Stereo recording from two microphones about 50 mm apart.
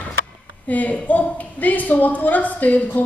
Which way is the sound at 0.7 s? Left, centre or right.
Left.